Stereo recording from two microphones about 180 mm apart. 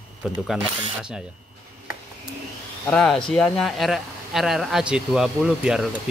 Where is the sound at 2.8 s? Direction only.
5° left (ahead or behind).